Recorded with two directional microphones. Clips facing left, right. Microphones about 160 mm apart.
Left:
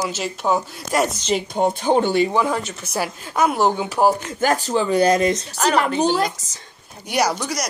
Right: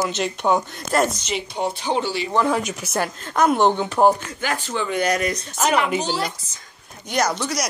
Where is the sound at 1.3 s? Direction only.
45° left (ahead or behind).